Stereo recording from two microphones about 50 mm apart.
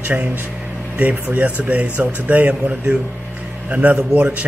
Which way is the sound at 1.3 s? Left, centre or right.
Right.